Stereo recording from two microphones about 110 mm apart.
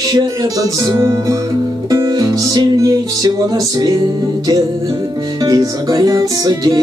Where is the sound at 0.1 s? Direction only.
35° right (ahead or behind).